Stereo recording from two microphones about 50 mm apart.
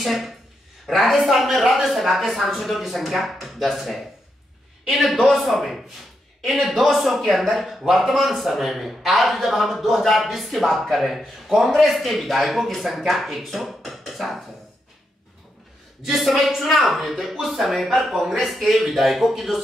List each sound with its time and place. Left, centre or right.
0.0 s speech: centre
16.0 s speech: centre